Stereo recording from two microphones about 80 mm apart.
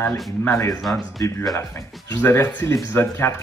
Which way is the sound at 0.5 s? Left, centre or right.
Left.